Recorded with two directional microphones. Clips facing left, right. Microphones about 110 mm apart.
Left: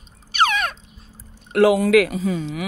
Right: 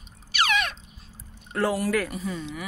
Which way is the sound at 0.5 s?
45° left (ahead or behind).